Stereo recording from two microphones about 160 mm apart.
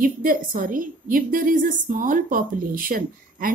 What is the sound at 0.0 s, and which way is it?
A woman's voice, 60° right (ahead or behind).